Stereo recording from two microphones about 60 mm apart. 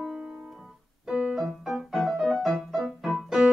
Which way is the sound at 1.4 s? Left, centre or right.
Centre.